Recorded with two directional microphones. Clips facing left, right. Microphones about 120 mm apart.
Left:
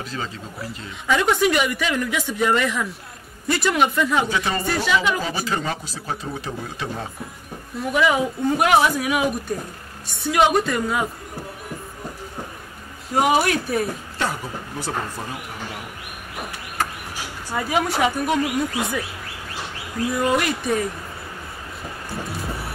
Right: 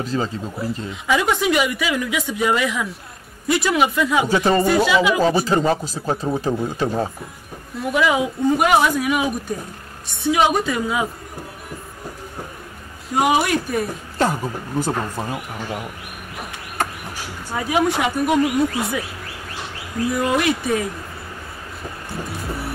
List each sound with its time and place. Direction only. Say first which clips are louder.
0.0 s speech: right 7 dB; 35° right (ahead or behind)
1.0 s speech: even; 5° right (ahead or behind)
4.3 s speech: right 7 dB; 35° right (ahead or behind)
4.6 s a woman's voice: right 5 dB; 5° right (ahead or behind)
5.2 s speech: right 8 dB; 35° right (ahead or behind)
7.7 s speech: right 1 dB; centre (ahead or behind)
13.1 s speech: right 1 dB; centre (ahead or behind)
14.1 s speech: right 10 dB; 40° right (ahead or behind)
17.6 s speech: right 2 dB; centre (ahead or behind)
20.2 s speech: right 1 dB; centre (ahead or behind)